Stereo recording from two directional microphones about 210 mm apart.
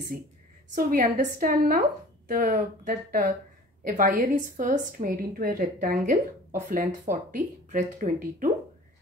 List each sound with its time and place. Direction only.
0.7 s a woman's voice: 40° right (ahead or behind)